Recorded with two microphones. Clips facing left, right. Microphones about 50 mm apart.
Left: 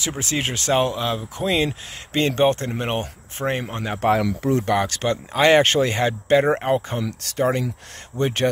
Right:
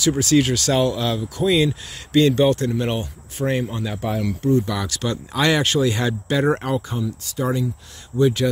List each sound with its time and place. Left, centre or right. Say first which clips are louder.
0.2 s speech: right 7 dB; left
4.1 s speech: even; left
4.6 s speech: left 4 dB; left
7.0 s speech: right 1 dB; left
7.3 s speech: left 2 dB; left